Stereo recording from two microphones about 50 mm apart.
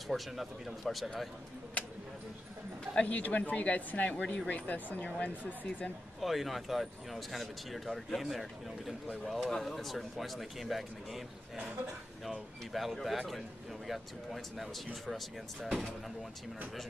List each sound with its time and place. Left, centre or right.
0.1 s speech: centre
3.0 s speech: left
6.2 s speech: centre
12.3 s speech: centre